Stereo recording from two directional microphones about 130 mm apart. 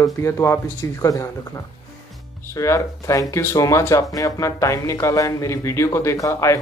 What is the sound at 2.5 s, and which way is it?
Speech, 25° left (ahead or behind).